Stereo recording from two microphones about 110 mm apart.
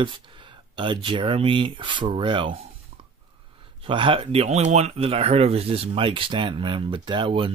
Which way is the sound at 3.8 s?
50° right (ahead or behind).